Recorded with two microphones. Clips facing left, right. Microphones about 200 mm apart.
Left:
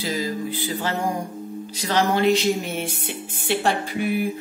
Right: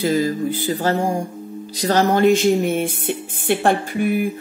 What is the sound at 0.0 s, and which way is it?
Speech, 50° right (ahead or behind).